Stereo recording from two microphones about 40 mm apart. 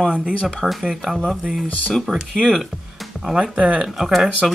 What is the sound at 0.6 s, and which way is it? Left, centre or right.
Speech, centre.